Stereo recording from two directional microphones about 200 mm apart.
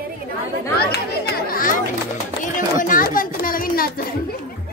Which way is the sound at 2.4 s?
40° left (ahead or behind).